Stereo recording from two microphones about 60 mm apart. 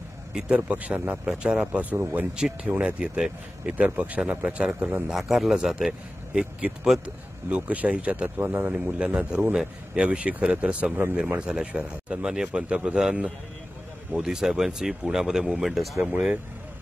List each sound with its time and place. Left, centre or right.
0.3 s speech: centre
1.2 s speech: centre
1.8 s speech: right
2.3 s speech: centre
5.0 s speech: centre
7.4 s speech: right